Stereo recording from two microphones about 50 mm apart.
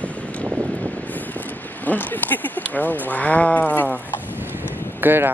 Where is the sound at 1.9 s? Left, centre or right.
Left.